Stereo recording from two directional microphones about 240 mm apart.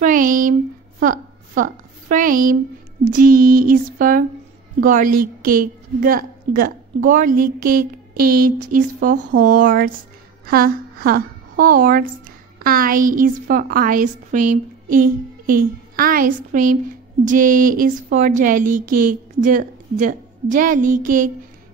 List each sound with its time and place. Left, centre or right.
0.0 s a woman's voice: right